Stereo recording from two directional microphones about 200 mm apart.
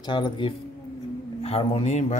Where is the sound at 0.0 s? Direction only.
25° left (ahead or behind).